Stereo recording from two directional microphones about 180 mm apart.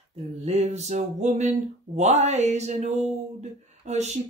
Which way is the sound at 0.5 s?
35° right (ahead or behind).